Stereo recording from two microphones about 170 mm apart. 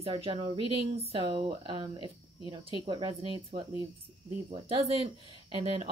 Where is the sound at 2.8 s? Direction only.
25° right (ahead or behind).